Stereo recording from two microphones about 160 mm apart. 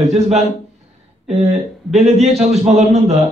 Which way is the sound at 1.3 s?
40° right (ahead or behind).